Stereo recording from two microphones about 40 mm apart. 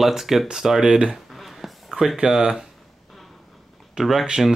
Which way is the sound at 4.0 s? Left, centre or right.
Right.